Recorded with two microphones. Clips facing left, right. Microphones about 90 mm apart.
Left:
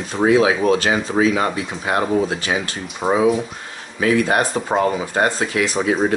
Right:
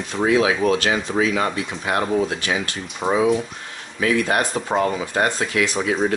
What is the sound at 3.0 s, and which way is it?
Speech, 5° left (ahead or behind).